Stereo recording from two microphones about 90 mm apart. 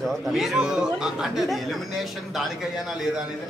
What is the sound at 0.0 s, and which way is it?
Speech, 5° right (ahead or behind).